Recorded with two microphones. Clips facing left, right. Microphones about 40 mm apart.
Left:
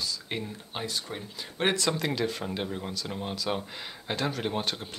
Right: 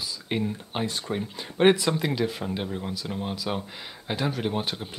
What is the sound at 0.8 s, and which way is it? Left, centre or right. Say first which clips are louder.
Speech: right 1 dB; right.